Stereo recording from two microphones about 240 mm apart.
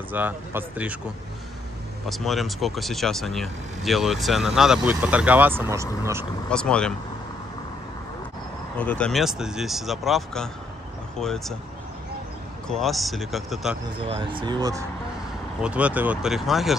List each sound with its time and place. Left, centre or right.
0.1 s speech: centre
2.0 s speech: centre
6.5 s speech: centre
8.7 s speech: centre
12.6 s speech: centre
14.0 s speech: right; by 16.7 s centre